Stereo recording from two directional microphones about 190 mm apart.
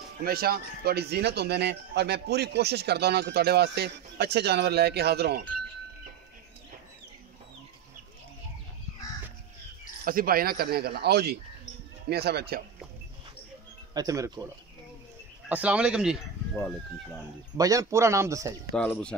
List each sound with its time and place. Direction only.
0.2 s a man's voice: 50° right (ahead or behind)
10.0 s a man's voice: 50° right (ahead or behind)
13.9 s a man's voice: 15° right (ahead or behind)
15.4 s speech: 5° right (ahead or behind)
17.6 s a man's voice: 20° right (ahead or behind)
18.8 s speech: 5° left (ahead or behind)